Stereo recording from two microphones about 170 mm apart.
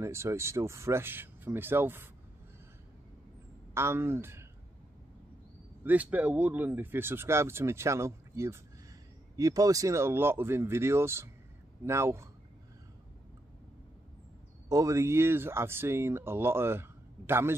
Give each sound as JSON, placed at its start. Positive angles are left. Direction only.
{"t": 0.0, "sound": "speech", "side_deg": -15}
{"t": 3.7, "sound": "speech", "side_deg": -15}
{"t": 5.9, "sound": "speech", "side_deg": -10}
{"t": 14.7, "sound": "speech", "side_deg": -20}